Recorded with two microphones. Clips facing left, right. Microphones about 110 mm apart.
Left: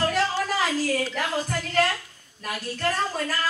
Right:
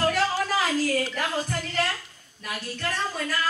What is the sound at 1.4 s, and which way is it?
A woman's voice, 40° left (ahead or behind).